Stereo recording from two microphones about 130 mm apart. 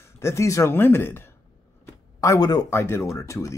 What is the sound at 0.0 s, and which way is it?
Speech, 20° left (ahead or behind).